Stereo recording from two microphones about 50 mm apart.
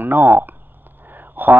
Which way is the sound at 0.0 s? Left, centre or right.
Right.